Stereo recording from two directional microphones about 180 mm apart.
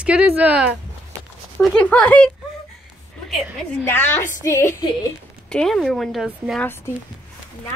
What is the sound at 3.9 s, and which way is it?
A woman's voice, 10° left (ahead or behind).